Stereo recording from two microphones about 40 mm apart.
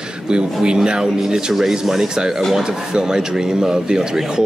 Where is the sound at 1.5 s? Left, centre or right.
Centre.